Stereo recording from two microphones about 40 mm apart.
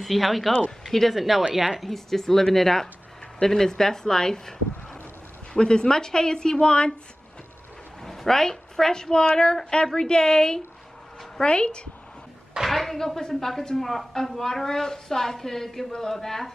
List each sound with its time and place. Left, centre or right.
0.0 s speech: centre
0.7 s speech: centre
1.0 s speech: centre
1.9 s a woman's voice: centre
8.0 s a woman's voice: centre; by 11.9 s left
12.6 s a woman's voice: centre